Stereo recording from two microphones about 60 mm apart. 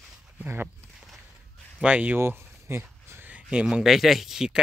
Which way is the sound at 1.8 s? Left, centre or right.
Right.